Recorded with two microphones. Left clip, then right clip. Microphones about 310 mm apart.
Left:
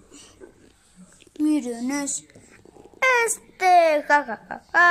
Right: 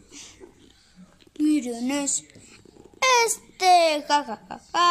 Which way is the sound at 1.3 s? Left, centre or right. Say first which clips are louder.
Even; centre.